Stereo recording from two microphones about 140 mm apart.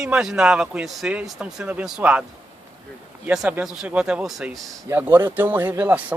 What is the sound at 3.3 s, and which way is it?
Speech, 10° right (ahead or behind).